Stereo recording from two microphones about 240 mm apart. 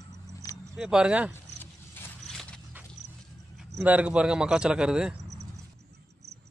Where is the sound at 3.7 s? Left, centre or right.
Centre.